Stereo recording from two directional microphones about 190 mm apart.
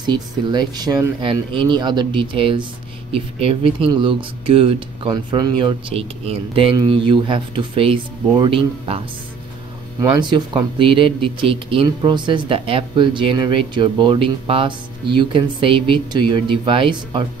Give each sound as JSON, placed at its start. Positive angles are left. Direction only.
{"t": 0.0, "sound": "speech", "side_deg": -25}